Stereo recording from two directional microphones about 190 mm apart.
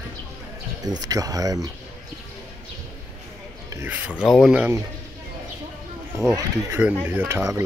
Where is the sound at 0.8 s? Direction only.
20° right (ahead or behind).